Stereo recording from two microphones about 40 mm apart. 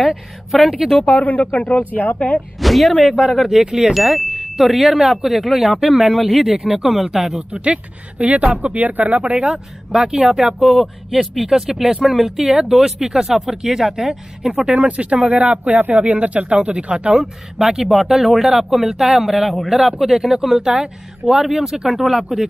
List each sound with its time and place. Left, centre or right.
0.5 s speech: centre
1.0 s speech: left
2.6 s speech: centre
7.5 s speech: right
9.2 s speech: right; by 12.3 s centre
12.3 s speech: centre
14.7 s speech: right
17.2 s speech: centre